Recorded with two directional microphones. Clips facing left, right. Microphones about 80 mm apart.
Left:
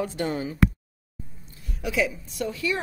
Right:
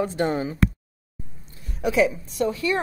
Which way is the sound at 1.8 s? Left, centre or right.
Right.